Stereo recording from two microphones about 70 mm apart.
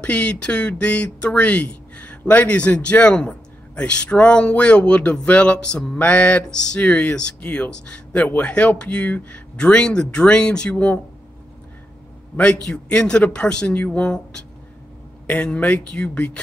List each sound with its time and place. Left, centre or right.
0.0 s speech: centre
12.6 s speech: centre